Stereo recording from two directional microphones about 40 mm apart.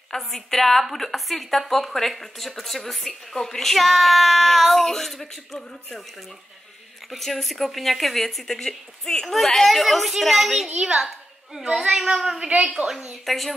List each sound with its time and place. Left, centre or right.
0.1 s a woman's voice: centre
7.1 s a woman's voice: centre
10.8 s a child's voice: centre
13.2 s a woman's voice: centre